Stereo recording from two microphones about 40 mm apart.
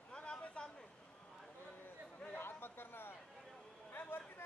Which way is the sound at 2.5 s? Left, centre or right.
Left.